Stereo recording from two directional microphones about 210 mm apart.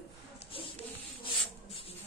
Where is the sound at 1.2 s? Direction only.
25° left (ahead or behind).